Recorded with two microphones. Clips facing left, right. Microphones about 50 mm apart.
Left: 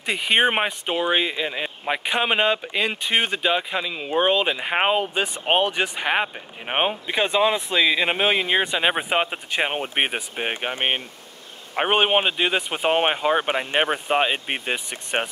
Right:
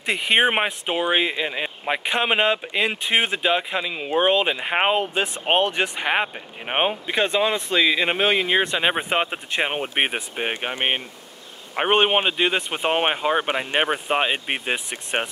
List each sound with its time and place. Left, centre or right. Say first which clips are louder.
0.0 s speech: right 1 dB; centre
9.8 s speech: right 1 dB; centre
10.4 s speech: even; centre
14.9 s speech: even; centre